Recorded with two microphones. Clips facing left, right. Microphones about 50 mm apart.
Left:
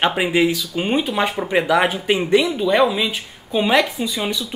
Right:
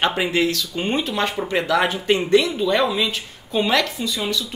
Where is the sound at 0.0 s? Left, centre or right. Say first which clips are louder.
Left 2 dB; centre.